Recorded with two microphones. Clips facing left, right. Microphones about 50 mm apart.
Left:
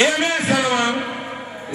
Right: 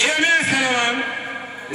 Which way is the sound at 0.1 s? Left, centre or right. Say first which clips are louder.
Right 2 dB; right.